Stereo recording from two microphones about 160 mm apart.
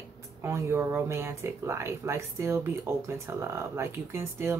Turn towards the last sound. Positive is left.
turn(degrees=-15)  # may be behind; listen again after turning